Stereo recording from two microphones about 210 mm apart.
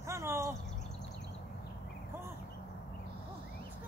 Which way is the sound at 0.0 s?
15° right (ahead or behind).